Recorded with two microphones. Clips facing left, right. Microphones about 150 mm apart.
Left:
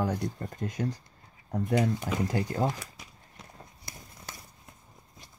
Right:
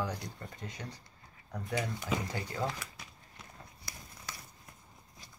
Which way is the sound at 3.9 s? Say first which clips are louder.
Left 3 dB; 25° left (ahead or behind).